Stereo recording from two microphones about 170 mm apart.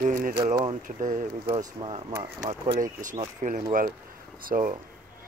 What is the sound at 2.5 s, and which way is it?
Speech, 45° right (ahead or behind).